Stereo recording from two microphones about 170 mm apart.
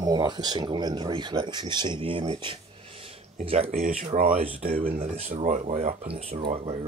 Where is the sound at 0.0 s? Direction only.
25° right (ahead or behind).